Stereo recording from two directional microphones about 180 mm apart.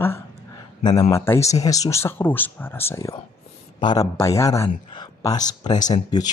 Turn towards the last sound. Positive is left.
turn(degrees=20)  # may be behind; listen again after turning